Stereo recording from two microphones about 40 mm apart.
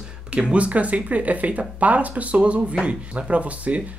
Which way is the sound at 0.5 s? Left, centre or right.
Right.